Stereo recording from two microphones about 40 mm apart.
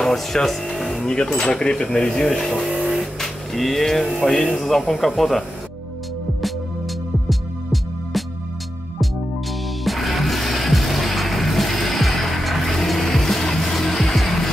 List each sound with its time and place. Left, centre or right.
0.0 s music: centre
1.0 s speech: centre
2.7 s music: centre
3.5 s speech: centre
7.2 s music: centre
9.8 s music: centre